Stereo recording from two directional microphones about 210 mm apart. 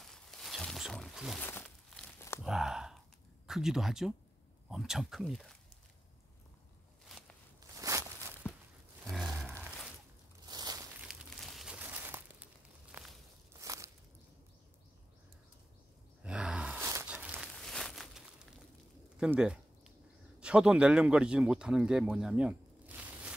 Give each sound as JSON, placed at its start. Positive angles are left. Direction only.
{"t": 0.0, "sound": "a sound", "side_deg": 0}
{"t": 1.5, "sound": "crumpling", "side_deg": 10}
{"t": 2.4, "sound": "a sound", "side_deg": 0}
{"t": 3.4, "sound": "speech", "side_deg": 0}
{"t": 7.1, "sound": "walk", "side_deg": 5}
{"t": 7.7, "sound": "walk", "side_deg": -15}
{"t": 9.0, "sound": "roaring cats", "side_deg": 0}
{"t": 10.4, "sound": "a sound", "side_deg": -20}
{"t": 11.0, "sound": "crumpling", "side_deg": 0}
{"t": 12.9, "sound": "walk", "side_deg": -10}
{"t": 16.2, "sound": "a sound", "side_deg": -5}
{"t": 19.1, "sound": "bird", "side_deg": -5}
{"t": 20.3, "sound": "speech", "side_deg": -5}